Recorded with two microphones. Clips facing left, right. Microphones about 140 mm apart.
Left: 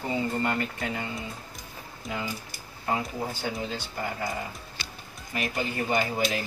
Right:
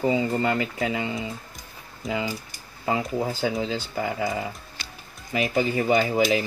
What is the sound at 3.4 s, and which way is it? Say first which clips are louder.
Speech: right 6 dB; 90° right.